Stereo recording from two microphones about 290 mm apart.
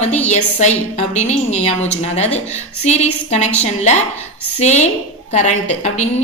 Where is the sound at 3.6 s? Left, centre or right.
Left.